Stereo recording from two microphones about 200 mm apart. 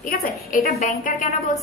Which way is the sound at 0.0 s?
45° left (ahead or behind).